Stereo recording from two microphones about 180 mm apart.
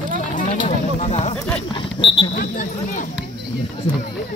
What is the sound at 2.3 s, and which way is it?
Speech, 50° left (ahead or behind).